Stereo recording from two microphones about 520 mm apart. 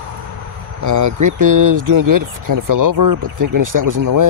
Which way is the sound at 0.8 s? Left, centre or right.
Right.